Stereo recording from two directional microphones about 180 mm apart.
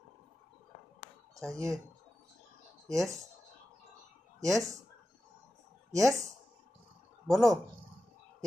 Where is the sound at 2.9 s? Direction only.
20° right (ahead or behind).